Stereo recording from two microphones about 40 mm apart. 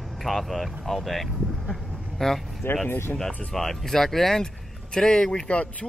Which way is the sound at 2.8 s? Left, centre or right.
Left.